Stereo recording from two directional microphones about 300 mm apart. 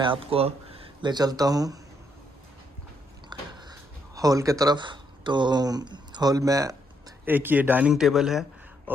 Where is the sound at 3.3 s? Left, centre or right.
Centre.